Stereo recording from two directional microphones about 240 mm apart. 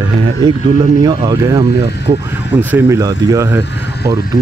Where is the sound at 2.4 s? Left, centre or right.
Centre.